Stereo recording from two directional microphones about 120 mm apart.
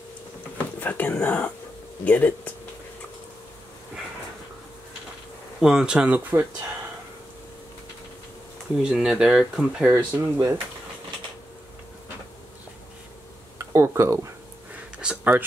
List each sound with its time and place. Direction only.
0.7 s speech: 15° left (ahead or behind)
5.6 s speech: 5° right (ahead or behind)
8.7 s speech: 5° right (ahead or behind)
9.8 s speech: 20° right (ahead or behind)
13.6 s speech: 25° right (ahead or behind)
15.0 s a sound: 10° right (ahead or behind)